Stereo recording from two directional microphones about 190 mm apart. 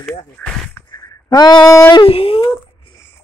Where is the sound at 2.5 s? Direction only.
15° left (ahead or behind).